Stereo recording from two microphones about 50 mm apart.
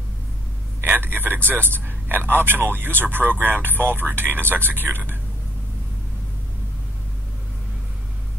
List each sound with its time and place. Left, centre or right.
0.8 s a man's voice: right